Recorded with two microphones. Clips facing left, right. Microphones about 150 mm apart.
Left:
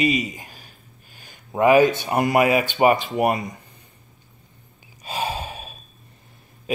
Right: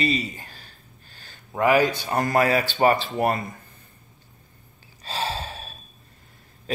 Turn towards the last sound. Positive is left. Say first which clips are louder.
# left 3 dB
turn(degrees=10)  # may be behind; listen again after turning